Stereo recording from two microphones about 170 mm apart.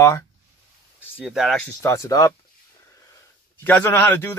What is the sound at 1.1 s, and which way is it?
Speech, centre (ahead or behind).